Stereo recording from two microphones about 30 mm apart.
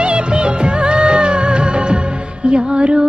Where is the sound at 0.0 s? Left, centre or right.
Right.